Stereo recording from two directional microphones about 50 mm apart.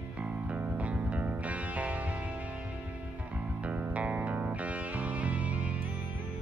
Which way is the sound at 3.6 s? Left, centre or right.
Right.